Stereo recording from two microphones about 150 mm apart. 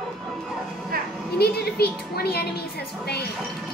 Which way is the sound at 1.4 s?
90° left.